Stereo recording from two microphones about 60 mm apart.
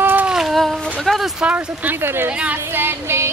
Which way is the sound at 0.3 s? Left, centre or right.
Centre.